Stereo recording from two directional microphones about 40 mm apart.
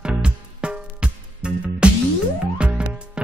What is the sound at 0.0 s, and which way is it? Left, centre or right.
Music, right.